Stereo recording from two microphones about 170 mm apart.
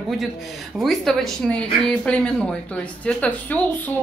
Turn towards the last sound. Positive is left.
turn(degrees=5)  # may be behind; listen again after turning